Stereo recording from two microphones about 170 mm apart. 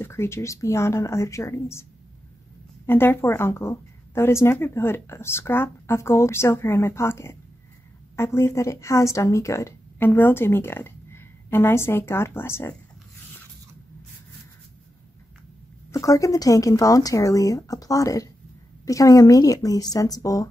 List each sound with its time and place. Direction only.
0.0 s a woman's voice: 15° left (ahead or behind)
2.9 s a woman's voice: 15° left (ahead or behind)
15.9 s speech: 20° left (ahead or behind)